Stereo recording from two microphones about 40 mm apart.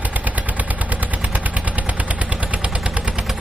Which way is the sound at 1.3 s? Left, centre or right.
Right.